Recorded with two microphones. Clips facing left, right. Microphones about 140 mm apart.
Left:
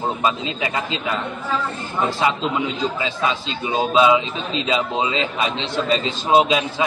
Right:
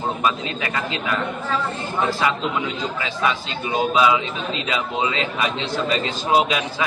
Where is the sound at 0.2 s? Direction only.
20° left (ahead or behind).